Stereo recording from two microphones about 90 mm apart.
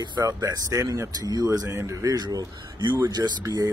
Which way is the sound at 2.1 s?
50° right (ahead or behind).